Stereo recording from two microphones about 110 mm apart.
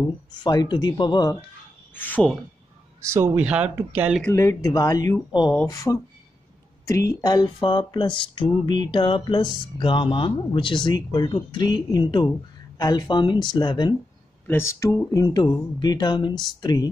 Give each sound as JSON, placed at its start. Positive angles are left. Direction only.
{"t": 0.3, "sound": "speech", "side_deg": 40}
{"t": 2.0, "sound": "speech", "side_deg": 15}
{"t": 3.1, "sound": "speech", "side_deg": -25}
{"t": 3.3, "sound": "speech", "side_deg": -10}
{"t": 4.3, "sound": "speech", "side_deg": 25}
{"t": 14.5, "sound": "speech", "side_deg": 25}